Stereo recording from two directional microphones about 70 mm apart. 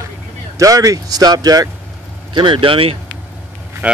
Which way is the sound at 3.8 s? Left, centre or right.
Right.